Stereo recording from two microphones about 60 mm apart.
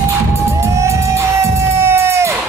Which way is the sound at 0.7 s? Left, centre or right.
Right.